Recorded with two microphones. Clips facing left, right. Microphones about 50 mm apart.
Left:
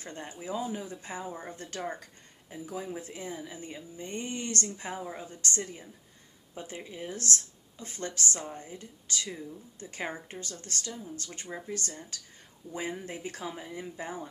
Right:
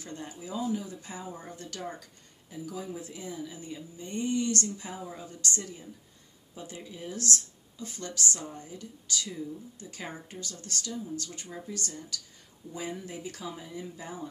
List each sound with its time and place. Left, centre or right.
0.0 s speech: left